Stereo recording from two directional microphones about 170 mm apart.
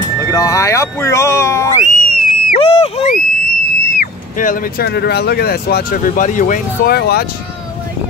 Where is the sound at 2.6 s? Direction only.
35° left (ahead or behind).